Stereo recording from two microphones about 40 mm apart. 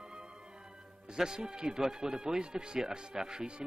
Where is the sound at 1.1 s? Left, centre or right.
Centre.